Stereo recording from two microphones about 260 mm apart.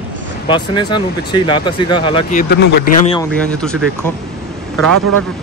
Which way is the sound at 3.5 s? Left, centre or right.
Centre.